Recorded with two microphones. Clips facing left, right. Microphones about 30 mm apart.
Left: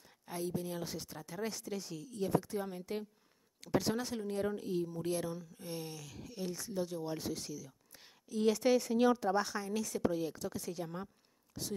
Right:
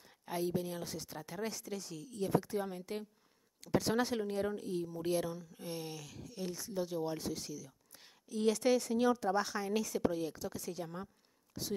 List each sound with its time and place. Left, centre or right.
0.0 s a sound: centre
0.6 s speech: centre
1.6 s speech: centre
3.9 s speech: right
4.3 s speech: centre